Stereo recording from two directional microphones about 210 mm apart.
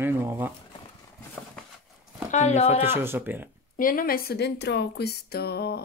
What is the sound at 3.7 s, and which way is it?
Speech, 40° left (ahead or behind).